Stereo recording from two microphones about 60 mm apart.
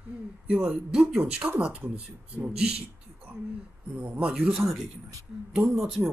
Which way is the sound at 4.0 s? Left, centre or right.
Right.